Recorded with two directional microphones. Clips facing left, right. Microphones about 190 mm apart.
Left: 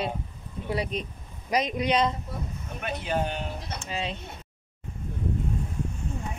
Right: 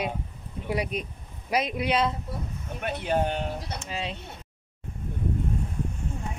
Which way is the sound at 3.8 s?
5° right (ahead or behind).